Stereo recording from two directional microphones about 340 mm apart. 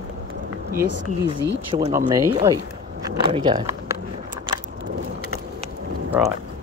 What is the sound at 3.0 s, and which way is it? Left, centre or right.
Speech, centre.